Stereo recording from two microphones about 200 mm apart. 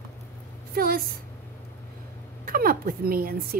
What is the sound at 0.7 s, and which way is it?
Speech, 50° right (ahead or behind).